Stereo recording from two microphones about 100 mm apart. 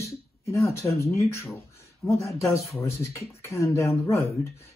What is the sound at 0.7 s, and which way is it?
Speech, 30° left (ahead or behind).